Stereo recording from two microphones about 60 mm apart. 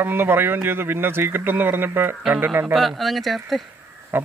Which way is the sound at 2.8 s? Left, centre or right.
Centre.